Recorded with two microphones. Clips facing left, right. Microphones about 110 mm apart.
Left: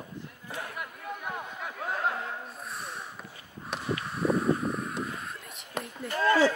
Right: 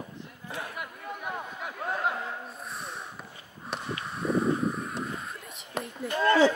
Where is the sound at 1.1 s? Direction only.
Centre (ahead or behind).